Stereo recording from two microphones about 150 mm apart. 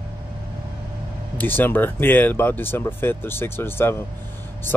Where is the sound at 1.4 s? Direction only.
15° left (ahead or behind).